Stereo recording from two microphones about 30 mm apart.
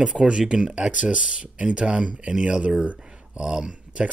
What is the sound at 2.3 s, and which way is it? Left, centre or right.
Speech, right.